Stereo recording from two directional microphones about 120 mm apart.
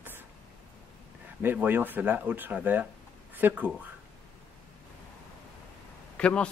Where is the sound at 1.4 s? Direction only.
15° right (ahead or behind).